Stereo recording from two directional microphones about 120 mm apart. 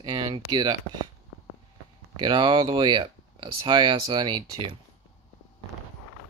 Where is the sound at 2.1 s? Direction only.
45° right (ahead or behind).